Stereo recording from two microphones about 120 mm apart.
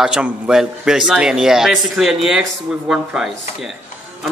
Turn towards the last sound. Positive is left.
turn(degrees=-5)  # may be behind; listen again after turning